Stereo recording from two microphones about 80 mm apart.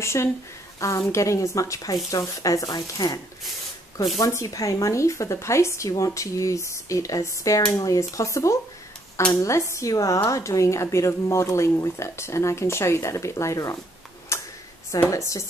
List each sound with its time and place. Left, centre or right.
0.0 s speech: left
4.3 s speech: left
14.3 s a sound: left
15.0 s speech: left